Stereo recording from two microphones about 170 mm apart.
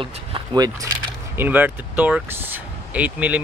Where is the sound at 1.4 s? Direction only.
10° right (ahead or behind).